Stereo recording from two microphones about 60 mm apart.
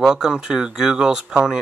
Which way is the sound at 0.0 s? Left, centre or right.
Centre.